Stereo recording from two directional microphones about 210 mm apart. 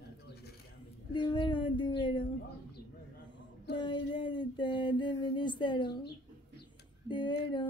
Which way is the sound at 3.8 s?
20° left (ahead or behind).